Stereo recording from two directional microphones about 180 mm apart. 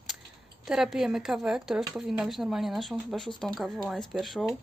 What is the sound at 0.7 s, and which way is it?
Speech, centre (ahead or behind).